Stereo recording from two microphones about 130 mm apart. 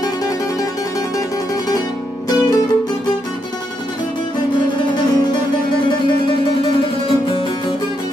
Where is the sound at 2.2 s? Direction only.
30° left (ahead or behind).